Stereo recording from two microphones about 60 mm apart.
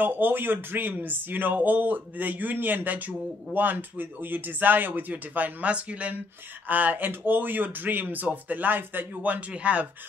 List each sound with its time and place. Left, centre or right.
0.0 s speech: right
9.5 s speech: centre